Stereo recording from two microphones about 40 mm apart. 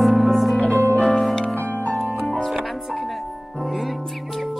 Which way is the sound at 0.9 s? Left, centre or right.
Left.